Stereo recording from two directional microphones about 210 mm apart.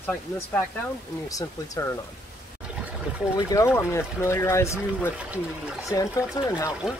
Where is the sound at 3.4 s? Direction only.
15° left (ahead or behind).